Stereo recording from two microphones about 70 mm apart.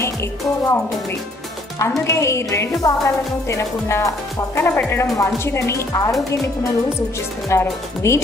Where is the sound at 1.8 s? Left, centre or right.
Left.